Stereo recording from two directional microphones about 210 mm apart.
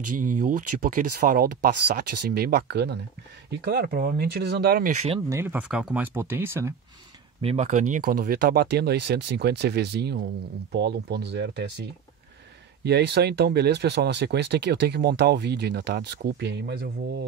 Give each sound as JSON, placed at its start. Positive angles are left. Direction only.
{"t": 0.2, "sound": "speech", "side_deg": -40}
{"t": 5.3, "sound": "speech", "side_deg": -10}
{"t": 7.4, "sound": "speech", "side_deg": -35}
{"t": 12.8, "sound": "speech", "side_deg": -50}